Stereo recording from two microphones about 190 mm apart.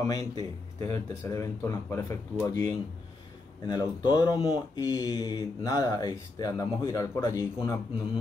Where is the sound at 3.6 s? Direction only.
20° left (ahead or behind).